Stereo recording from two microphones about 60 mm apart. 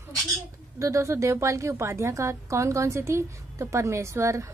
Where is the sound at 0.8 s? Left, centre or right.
Right.